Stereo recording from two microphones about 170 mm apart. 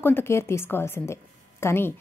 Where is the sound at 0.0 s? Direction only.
15° left (ahead or behind).